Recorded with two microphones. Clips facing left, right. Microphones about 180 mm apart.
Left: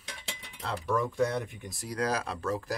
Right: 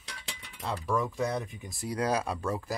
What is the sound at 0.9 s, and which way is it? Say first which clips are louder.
Speech: left 2 dB; centre (ahead or behind).